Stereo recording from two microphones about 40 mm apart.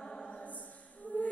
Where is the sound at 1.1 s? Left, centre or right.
Left.